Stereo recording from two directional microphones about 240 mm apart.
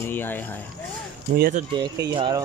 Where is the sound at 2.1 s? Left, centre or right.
Centre.